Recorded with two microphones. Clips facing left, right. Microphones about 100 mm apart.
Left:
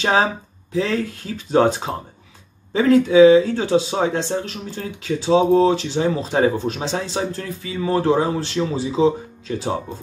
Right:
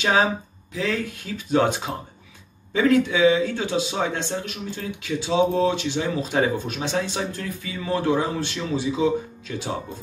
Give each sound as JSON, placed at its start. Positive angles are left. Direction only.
{"t": 0.0, "sound": "speech", "side_deg": 35}